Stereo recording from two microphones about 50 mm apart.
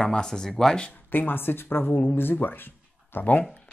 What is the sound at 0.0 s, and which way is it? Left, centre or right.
Speech, centre.